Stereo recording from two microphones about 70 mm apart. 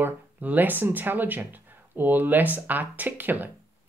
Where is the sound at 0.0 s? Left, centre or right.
Right.